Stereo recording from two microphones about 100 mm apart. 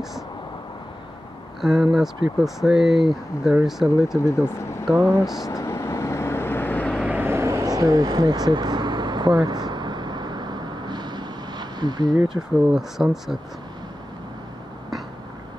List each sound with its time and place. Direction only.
1.6 s speech: 5° right (ahead or behind)
4.2 s speech: 30° left (ahead or behind)
5.2 s speech: 5° right (ahead or behind)
5.5 s vehicle: 30° left (ahead or behind)
7.1 s vehicle: 20° right (ahead or behind); by 12.1 s 45° right (ahead or behind)
12.4 s speech: 20° right (ahead or behind)
12.7 s speech: 5° right (ahead or behind)